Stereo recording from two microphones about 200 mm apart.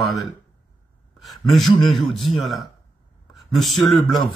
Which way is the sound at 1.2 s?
Centre (ahead or behind).